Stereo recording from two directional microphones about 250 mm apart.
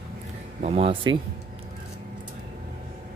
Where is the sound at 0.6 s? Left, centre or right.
Right.